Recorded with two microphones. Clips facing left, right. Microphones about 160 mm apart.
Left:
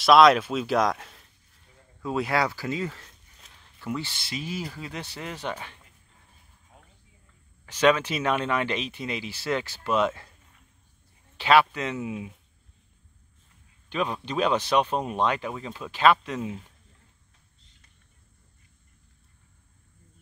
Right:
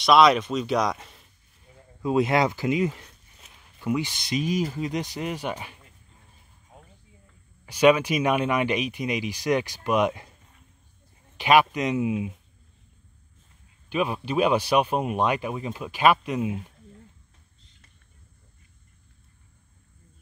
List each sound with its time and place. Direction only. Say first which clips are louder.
0.0 s speech: left 1 dB; centre (ahead or behind)
2.0 s speech: right 4 dB; 20° right (ahead or behind)
7.6 s speech: right 3 dB; 10° right (ahead or behind)
11.3 s speech: right 1 dB; 15° right (ahead or behind)
13.8 s speech: right 3 dB; 10° right (ahead or behind)